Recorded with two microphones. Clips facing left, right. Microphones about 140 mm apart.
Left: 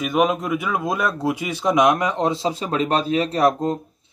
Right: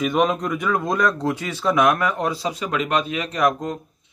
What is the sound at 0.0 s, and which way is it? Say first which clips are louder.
Speech: even; 5° left (ahead or behind).